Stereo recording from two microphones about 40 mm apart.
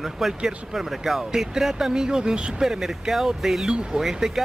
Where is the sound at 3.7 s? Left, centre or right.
Right.